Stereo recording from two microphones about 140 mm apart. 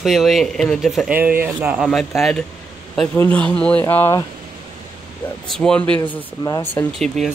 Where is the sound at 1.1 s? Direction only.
10° right (ahead or behind).